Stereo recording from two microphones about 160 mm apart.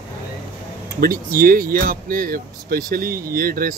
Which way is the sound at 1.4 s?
60° right (ahead or behind).